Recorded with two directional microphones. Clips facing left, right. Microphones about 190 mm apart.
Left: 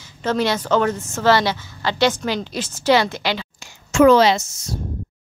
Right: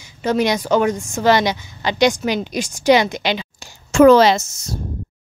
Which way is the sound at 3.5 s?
35° right (ahead or behind).